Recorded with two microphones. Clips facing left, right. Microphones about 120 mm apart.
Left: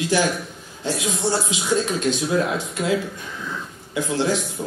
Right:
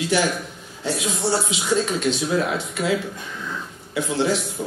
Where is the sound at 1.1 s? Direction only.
10° right (ahead or behind).